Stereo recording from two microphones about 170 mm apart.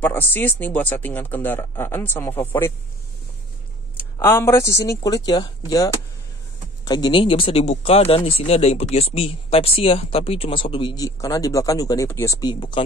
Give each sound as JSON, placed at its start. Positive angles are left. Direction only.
{"t": 0.0, "sound": "speech", "side_deg": 10}
{"t": 4.2, "sound": "speech", "side_deg": 15}